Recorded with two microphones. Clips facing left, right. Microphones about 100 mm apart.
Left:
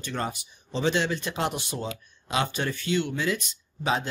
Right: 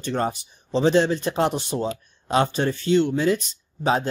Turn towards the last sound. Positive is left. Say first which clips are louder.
# right 5 dB
turn(degrees=-40)  # may be behind; listen again after turning